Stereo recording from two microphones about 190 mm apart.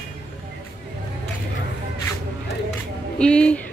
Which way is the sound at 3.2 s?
5° left (ahead or behind).